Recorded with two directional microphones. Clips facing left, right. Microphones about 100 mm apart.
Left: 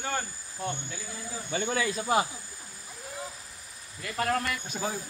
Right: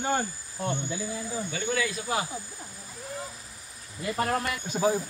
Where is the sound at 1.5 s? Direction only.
30° left (ahead or behind).